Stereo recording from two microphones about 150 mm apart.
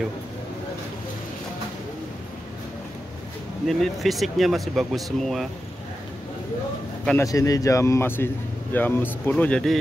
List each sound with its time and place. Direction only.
3.6 s speech: centre (ahead or behind)
7.2 s a man's voice: 25° left (ahead or behind); by 9.8 s 5° left (ahead or behind)